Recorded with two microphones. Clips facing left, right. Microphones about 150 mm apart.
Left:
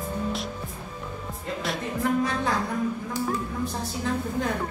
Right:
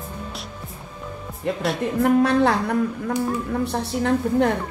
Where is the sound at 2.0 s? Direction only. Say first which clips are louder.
Right 9 dB; 70° right (ahead or behind).